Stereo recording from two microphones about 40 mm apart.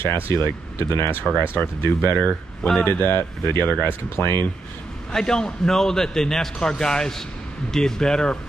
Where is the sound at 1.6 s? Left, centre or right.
Left.